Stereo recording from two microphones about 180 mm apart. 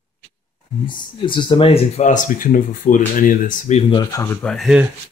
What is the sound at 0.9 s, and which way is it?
Speech, 25° left (ahead or behind).